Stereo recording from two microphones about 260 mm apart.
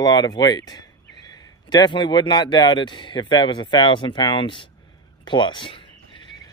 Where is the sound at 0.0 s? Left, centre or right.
Centre.